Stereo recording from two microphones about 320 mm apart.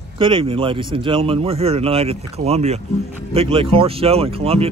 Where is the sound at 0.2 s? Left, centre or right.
Centre.